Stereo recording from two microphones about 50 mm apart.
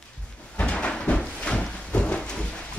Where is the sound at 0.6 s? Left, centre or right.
Left.